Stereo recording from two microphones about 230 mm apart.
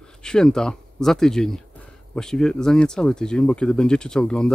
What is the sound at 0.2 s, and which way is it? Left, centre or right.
Speech, centre.